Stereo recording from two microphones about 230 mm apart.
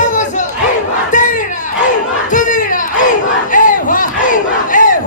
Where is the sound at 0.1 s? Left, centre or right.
Left.